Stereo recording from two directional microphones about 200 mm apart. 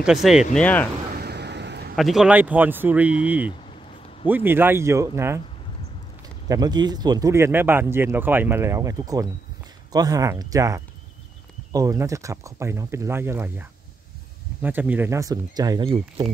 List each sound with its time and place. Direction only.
0.0 s speech: centre (ahead or behind)
1.1 s a sound: 55° right (ahead or behind)
2.0 s speech: centre (ahead or behind)
6.5 s speech: 20° right (ahead or behind)